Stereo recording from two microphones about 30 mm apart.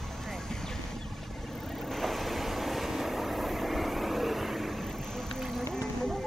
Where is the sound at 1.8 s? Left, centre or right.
Centre.